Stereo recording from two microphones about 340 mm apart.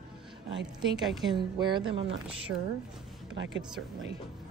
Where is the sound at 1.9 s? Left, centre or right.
Right.